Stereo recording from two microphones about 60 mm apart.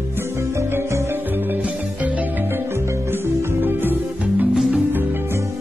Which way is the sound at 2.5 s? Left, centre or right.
Right.